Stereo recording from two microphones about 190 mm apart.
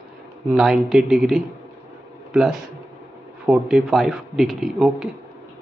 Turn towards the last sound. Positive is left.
turn(degrees=0)  # may be behind; listen again after turning